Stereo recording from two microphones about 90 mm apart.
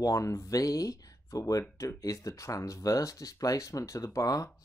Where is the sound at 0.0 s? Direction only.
40° left (ahead or behind).